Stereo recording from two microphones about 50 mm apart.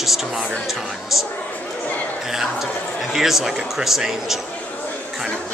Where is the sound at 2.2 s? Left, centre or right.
Centre.